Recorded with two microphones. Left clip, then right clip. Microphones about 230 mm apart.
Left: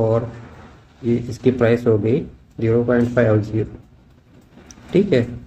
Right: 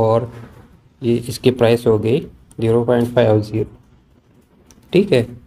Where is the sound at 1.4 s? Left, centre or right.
Centre.